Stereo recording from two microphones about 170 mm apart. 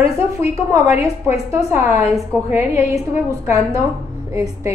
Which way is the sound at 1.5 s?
15° right (ahead or behind).